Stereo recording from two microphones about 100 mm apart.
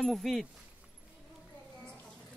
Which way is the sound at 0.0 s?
Centre (ahead or behind).